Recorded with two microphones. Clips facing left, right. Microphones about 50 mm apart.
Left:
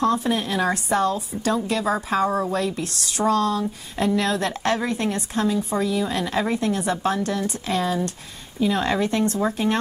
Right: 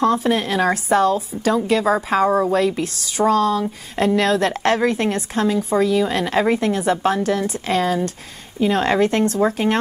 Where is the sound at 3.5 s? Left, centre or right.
Right.